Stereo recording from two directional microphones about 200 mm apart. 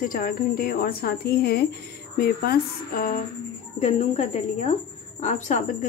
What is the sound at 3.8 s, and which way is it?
Speech, 35° left (ahead or behind).